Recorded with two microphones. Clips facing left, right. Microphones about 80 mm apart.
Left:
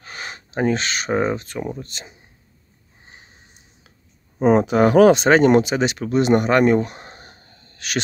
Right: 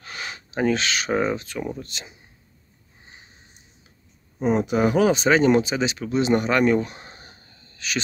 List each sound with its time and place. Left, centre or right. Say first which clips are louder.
0.0 s a sound: left 1 dB; left
1.3 s speech: left 2 dB; left
4.4 s speech: left 5 dB; left